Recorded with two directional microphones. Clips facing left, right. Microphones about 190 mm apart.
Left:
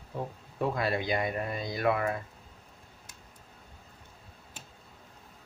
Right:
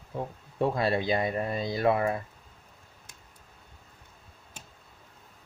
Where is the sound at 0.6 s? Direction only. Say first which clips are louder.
Right 3 dB; 30° right (ahead or behind).